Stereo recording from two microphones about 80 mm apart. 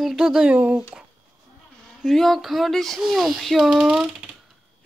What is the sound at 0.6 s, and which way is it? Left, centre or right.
Speech, centre.